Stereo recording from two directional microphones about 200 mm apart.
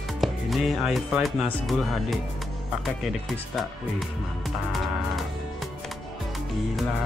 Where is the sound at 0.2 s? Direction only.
Centre (ahead or behind).